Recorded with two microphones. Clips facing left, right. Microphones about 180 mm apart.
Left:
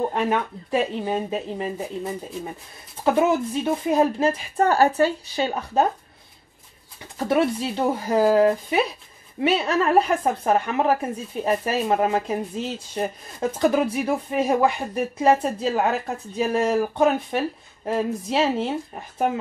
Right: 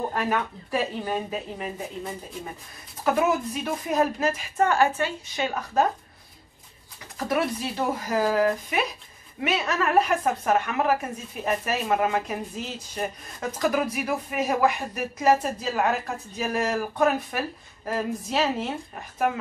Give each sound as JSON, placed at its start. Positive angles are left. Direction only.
{"t": 0.1, "sound": "a woman's voice", "side_deg": 25}
{"t": 3.0, "sound": "a woman's voice", "side_deg": 30}
{"t": 7.2, "sound": "a woman's voice", "side_deg": 25}